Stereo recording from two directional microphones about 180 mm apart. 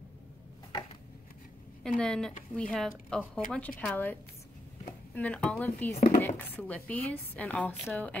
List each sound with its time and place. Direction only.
1.8 s a woman's voice: 5° left (ahead or behind)
5.9 s speech: 40° left (ahead or behind)
6.2 s a woman's voice: 10° left (ahead or behind)